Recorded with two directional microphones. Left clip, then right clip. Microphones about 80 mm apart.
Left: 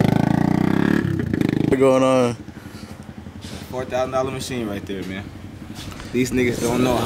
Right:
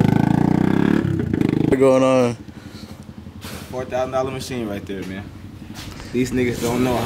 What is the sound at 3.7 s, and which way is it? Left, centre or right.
Speech, centre.